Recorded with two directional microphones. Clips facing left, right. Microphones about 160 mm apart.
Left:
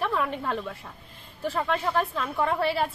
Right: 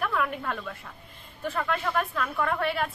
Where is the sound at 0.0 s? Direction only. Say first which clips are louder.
Left 1 dB; 30° left (ahead or behind).